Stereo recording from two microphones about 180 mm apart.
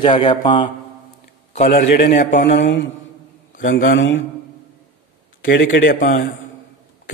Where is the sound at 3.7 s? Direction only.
55° left (ahead or behind).